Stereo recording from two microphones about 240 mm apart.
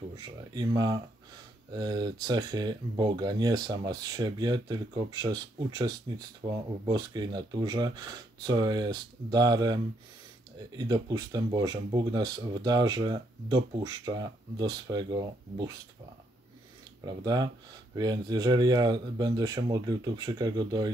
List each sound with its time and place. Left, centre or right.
0.1 s speech: centre
10.8 s speech: centre
17.0 s speech: centre